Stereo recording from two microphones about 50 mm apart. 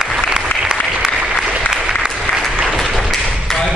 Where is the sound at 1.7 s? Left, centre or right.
Centre.